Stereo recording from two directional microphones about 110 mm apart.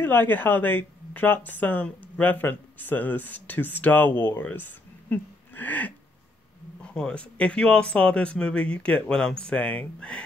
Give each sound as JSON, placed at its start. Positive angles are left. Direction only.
{"t": 0.0, "sound": "speech", "side_deg": 20}